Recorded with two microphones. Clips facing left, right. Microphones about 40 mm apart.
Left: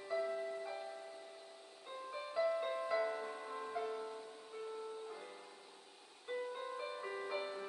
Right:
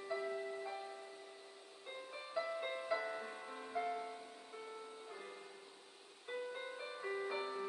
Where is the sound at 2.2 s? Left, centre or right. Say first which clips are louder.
Left 5 dB; centre.